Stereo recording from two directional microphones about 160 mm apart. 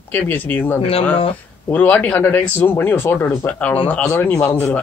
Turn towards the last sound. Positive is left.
turn(degrees=10)  # may be behind; listen again after turning